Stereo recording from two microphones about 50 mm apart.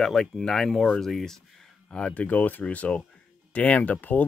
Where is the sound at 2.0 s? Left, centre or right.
Left.